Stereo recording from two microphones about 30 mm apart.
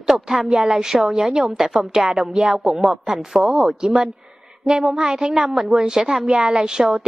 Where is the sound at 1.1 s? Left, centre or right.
Right.